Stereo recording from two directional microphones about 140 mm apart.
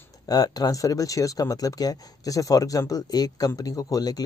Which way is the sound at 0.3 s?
30° left (ahead or behind).